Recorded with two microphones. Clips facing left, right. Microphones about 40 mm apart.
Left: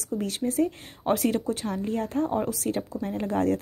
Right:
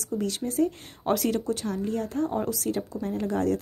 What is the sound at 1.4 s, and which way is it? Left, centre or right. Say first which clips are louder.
Speech: even; left.